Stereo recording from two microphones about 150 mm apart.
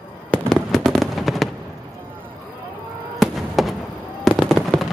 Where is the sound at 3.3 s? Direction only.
Centre (ahead or behind).